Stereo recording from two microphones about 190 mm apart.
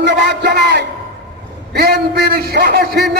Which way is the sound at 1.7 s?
60° right (ahead or behind).